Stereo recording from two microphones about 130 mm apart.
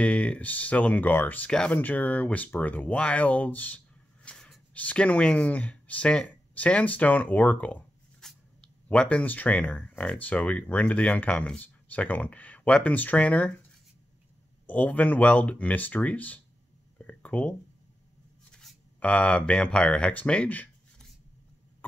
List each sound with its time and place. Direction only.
0.0 s speech: 10° left (ahead or behind)
14.7 s speech: 15° left (ahead or behind)
17.0 s a sound: 10° left (ahead or behind)
18.5 s speech: 5° left (ahead or behind)